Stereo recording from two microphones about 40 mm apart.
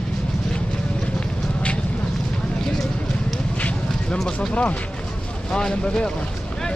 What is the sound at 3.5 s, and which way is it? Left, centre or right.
Vehicle, left.